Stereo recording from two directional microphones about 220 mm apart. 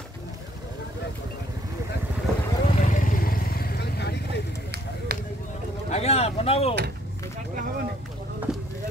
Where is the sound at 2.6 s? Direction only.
30° left (ahead or behind); by 4.4 s 50° left (ahead or behind).